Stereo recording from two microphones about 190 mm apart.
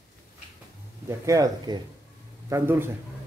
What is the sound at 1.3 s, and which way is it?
A man's voice, 20° right (ahead or behind).